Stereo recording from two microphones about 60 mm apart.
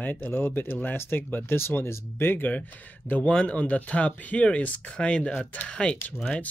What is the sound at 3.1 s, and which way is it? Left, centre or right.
Speech, left.